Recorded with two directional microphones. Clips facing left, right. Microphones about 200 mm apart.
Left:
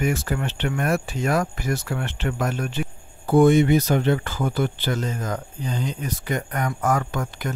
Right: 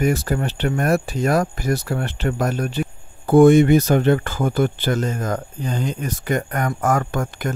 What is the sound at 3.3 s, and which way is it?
Speech, 50° right (ahead or behind).